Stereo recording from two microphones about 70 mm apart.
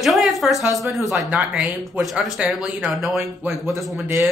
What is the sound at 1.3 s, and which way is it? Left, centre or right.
Speech, right.